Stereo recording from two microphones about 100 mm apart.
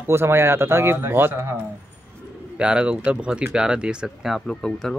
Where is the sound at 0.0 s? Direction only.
25° right (ahead or behind).